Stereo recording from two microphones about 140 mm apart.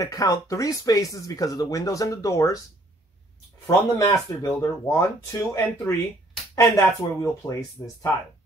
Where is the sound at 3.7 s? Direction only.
25° left (ahead or behind).